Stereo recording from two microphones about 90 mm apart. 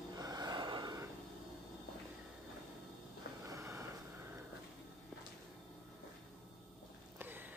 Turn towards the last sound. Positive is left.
turn(degrees=-20)  # may be behind; listen again after turning